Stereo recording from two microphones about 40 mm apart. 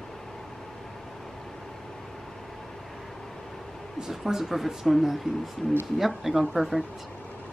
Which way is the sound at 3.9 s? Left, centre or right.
Centre.